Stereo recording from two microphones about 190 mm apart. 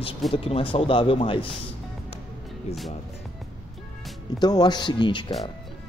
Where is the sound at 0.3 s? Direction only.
30° left (ahead or behind).